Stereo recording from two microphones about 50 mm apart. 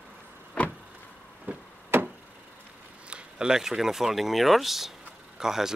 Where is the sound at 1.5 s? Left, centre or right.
Right.